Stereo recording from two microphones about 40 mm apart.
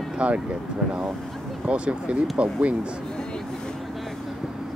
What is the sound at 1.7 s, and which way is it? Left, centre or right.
Speech, right.